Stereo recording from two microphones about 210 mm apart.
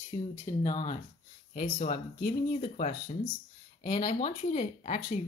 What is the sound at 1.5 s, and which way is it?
Speech, 40° left (ahead or behind).